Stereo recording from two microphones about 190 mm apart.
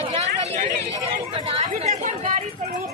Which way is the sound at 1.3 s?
35° right (ahead or behind).